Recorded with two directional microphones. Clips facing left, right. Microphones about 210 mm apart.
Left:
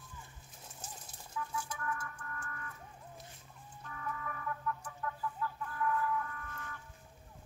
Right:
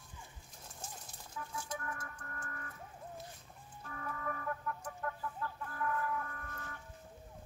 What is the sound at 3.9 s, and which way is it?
Chicken, 40° right (ahead or behind).